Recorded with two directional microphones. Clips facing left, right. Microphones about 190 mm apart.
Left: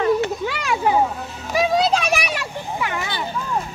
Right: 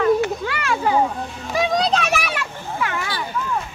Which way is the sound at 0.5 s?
15° left (ahead or behind).